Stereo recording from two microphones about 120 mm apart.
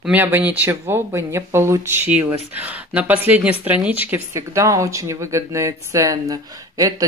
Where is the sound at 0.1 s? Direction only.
15° right (ahead or behind).